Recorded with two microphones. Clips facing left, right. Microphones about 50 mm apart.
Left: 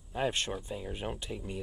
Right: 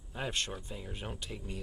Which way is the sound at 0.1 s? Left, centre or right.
Centre.